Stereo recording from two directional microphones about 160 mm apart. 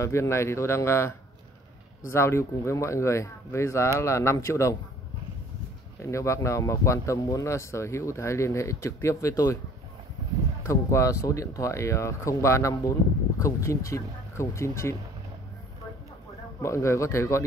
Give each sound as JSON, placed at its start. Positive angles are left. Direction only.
{"t": 0.0, "sound": "speech", "side_deg": 20}
{"t": 6.0, "sound": "speech", "side_deg": 20}
{"t": 10.6, "sound": "speech", "side_deg": 20}
{"t": 16.6, "sound": "speech", "side_deg": 20}